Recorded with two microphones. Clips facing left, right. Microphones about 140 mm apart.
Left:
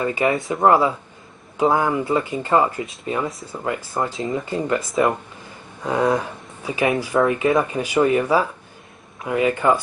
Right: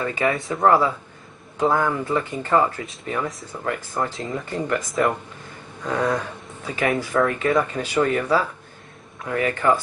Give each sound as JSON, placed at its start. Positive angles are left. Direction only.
{"t": 0.0, "sound": "speech", "side_deg": 20}
{"t": 5.9, "sound": "speech", "side_deg": 15}